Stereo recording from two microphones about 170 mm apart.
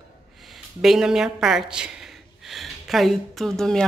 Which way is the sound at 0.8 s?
5° right (ahead or behind).